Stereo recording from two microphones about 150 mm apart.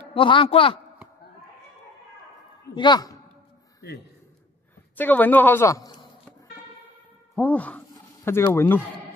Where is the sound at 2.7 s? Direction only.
30° left (ahead or behind).